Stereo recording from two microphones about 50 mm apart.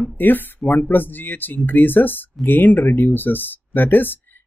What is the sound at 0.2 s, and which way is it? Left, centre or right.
Speech, left.